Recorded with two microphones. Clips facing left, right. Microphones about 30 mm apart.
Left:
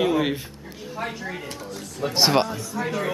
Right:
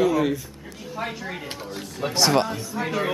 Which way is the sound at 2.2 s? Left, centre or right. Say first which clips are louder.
Even; left.